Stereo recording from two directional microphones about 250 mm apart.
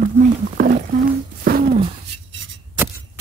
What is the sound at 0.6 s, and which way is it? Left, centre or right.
Speech, right.